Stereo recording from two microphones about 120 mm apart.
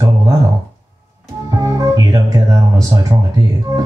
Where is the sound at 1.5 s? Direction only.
25° right (ahead or behind).